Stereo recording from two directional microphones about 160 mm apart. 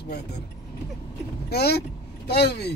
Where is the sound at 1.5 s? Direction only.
90° left.